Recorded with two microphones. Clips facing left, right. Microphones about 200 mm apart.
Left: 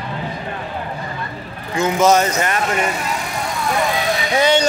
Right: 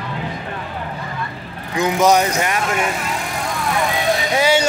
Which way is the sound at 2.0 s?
10° right (ahead or behind).